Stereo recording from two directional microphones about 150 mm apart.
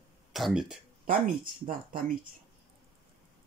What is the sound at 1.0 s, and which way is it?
Speech, 70° right (ahead or behind).